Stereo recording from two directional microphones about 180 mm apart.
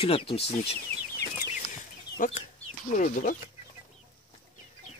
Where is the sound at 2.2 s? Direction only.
50° left (ahead or behind).